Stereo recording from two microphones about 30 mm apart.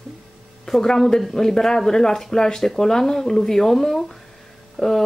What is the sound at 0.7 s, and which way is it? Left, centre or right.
Speech, centre.